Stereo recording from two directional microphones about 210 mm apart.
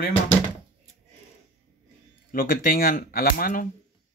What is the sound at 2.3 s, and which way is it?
Speech, 40° left (ahead or behind).